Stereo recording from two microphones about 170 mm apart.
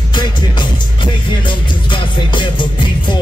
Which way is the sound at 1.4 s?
30° left (ahead or behind).